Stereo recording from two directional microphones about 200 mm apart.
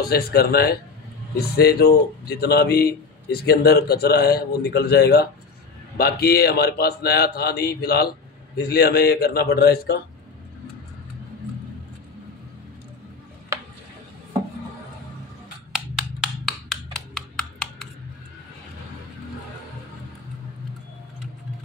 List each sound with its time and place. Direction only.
0.0 s speech: 50° left (ahead or behind)
15.7 s wood block: centre (ahead or behind)